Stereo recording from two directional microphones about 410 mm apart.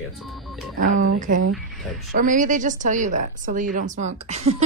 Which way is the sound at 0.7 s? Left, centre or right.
Centre.